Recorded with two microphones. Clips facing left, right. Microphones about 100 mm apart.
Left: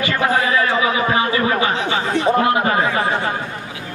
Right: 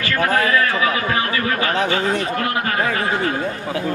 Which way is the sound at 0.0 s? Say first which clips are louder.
Left 1 dB; 15° left (ahead or behind).